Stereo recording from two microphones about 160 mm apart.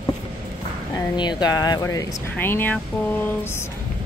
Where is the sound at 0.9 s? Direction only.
25° left (ahead or behind).